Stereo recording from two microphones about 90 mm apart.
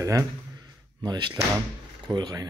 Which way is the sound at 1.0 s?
55° right (ahead or behind).